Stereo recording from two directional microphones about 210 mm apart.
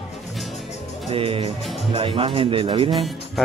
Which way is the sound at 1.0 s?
25° right (ahead or behind).